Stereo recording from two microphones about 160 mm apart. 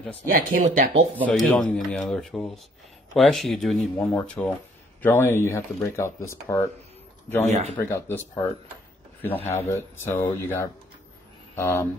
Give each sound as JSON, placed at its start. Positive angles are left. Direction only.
{"t": 0.3, "sound": "speech", "side_deg": -55}
{"t": 1.2, "sound": "speech", "side_deg": 5}
{"t": 7.4, "sound": "speech", "side_deg": -45}
{"t": 7.9, "sound": "speech", "side_deg": 15}
{"t": 9.5, "sound": "speech", "side_deg": 15}